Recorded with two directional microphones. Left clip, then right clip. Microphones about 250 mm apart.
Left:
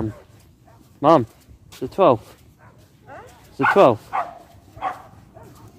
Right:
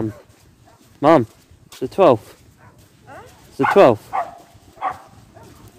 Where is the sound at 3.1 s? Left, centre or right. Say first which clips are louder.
Right 1 dB; right.